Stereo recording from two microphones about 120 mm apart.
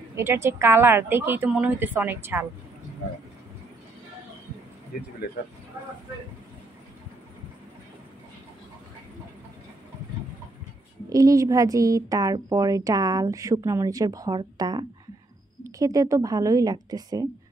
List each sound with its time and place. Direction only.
0.1 s a woman's voice: 20° right (ahead or behind)
11.1 s speech: 30° right (ahead or behind)